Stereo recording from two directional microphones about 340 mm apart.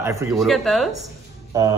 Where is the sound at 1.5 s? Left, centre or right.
Centre.